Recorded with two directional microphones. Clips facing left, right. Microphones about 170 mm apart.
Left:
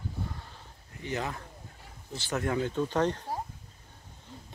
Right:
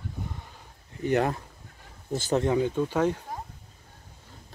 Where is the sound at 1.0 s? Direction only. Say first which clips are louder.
Right 10 dB; 60° right (ahead or behind).